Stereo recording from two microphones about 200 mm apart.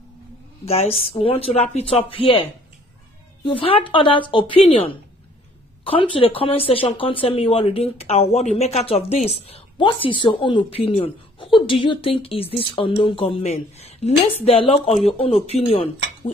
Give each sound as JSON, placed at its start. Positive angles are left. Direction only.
{"t": 0.7, "sound": "speech", "side_deg": 30}
{"t": 3.4, "sound": "speech", "side_deg": 25}